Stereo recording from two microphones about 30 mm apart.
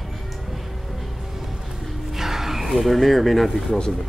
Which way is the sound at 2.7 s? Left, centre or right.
Centre.